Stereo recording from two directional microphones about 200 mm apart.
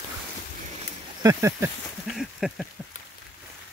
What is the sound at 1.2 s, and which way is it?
Speech, 15° right (ahead or behind).